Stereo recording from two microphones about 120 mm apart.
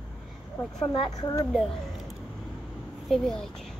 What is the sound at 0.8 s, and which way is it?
Speech, 30° left (ahead or behind).